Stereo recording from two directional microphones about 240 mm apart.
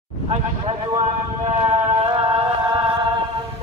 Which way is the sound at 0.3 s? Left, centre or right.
Right.